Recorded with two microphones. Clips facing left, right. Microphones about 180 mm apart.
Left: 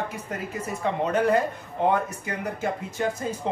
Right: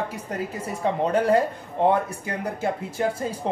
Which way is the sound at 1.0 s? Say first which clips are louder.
Right 2 dB; 35° right (ahead or behind).